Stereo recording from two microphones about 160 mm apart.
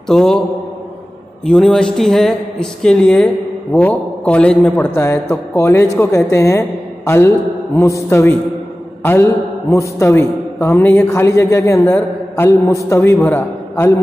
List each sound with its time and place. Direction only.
0.1 s speech: 5° left (ahead or behind)
1.4 s a man's voice: 5° left (ahead or behind)